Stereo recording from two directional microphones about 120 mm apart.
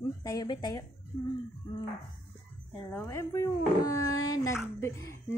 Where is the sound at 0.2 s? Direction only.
35° left (ahead or behind).